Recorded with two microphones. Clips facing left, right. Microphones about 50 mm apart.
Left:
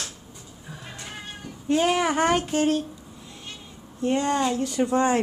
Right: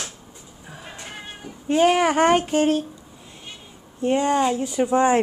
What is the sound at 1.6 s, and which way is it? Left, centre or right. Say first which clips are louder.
Child singing: right 4 dB; right.